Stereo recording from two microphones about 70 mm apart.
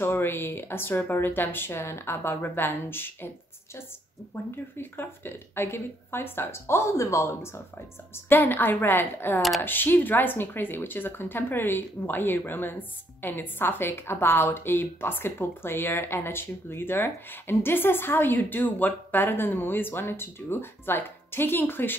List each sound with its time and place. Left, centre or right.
0.0 s speech: left
4.7 s speech: left
8.3 s speech: left